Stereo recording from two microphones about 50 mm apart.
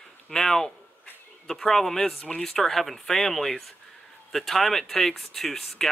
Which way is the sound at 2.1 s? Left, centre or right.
Centre.